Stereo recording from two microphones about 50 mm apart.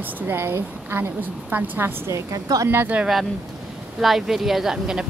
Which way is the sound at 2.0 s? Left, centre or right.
Right.